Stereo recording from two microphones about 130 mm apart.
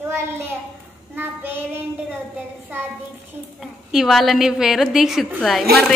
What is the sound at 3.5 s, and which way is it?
A woman's voice, centre (ahead or behind).